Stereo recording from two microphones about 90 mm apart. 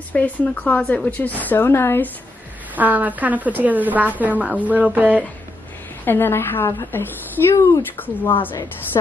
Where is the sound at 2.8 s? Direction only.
20° right (ahead or behind).